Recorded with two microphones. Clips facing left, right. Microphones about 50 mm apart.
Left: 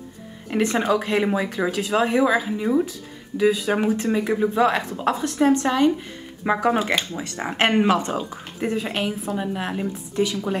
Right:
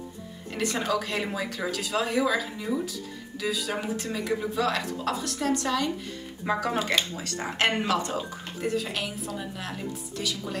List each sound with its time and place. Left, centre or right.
0.5 s speech: left
6.8 s speech: centre
7.2 s speech: left